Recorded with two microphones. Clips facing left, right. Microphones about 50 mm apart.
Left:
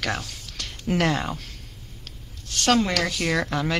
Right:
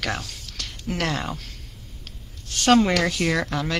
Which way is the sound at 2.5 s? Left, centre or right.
Centre.